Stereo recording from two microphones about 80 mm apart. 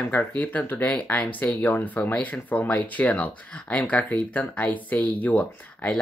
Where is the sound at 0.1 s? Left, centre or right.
Left.